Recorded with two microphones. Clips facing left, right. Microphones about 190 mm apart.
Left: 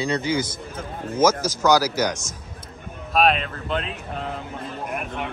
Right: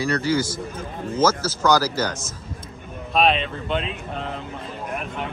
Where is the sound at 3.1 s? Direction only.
5° left (ahead or behind).